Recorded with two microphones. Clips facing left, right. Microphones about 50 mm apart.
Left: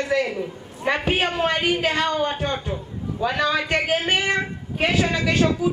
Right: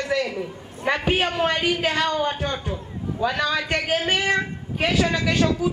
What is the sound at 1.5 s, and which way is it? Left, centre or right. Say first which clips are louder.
Speech: left 1 dB; centre.